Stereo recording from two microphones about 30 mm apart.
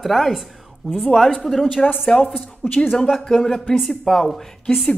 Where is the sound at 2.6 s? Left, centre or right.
Left.